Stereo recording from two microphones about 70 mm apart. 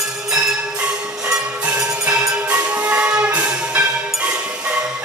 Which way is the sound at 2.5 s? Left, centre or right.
Right.